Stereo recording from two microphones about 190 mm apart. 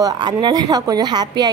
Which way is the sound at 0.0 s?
20° right (ahead or behind).